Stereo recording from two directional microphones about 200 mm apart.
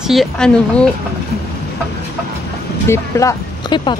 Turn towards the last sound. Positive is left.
turn(degrees=20)  # may be behind; listen again after turning